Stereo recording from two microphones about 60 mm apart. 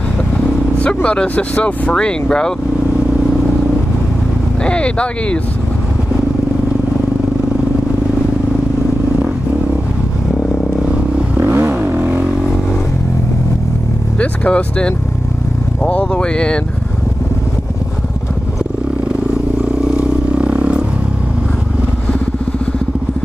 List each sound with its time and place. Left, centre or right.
0.7 s speech: centre
4.6 s speech: centre
11.3 s vehicle: right
14.1 s speech: left
20.0 s a sound: centre